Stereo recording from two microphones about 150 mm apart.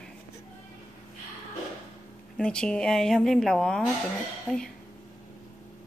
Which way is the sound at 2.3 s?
5° left (ahead or behind).